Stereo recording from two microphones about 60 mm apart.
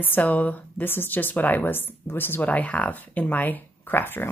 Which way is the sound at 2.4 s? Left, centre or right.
Left.